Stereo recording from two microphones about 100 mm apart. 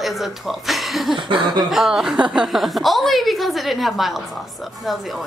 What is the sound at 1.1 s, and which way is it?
Speech, 55° right (ahead or behind).